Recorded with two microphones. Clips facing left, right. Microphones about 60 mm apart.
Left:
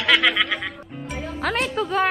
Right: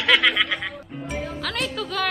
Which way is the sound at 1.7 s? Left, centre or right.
Left.